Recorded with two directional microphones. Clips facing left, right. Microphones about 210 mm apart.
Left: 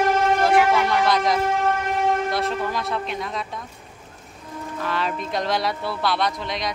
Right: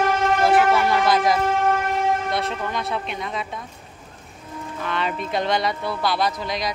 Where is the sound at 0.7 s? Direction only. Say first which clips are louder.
Right 1 dB; 5° right (ahead or behind).